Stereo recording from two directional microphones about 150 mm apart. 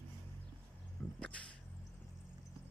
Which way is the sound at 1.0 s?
20° left (ahead or behind).